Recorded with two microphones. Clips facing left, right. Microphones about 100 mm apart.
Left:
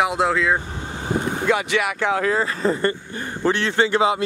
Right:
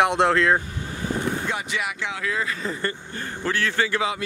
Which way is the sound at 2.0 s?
45° left (ahead or behind).